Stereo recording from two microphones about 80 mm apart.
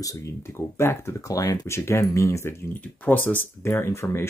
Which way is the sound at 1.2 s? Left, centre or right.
Left.